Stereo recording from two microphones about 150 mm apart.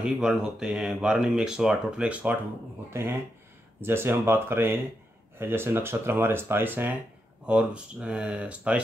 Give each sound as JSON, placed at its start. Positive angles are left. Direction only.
{"t": 0.0, "sound": "speech", "side_deg": -5}